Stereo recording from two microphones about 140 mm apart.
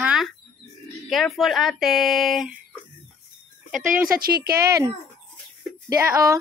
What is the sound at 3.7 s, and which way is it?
Speech, 75° right (ahead or behind).